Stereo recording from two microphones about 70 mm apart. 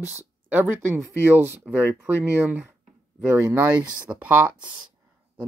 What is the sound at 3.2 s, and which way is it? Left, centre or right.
Speech, right.